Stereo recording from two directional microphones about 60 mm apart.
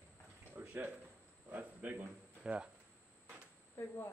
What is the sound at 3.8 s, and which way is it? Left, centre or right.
Speech, left.